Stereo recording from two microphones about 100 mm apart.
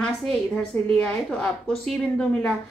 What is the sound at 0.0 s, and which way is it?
A woman's voice, 5° left (ahead or behind).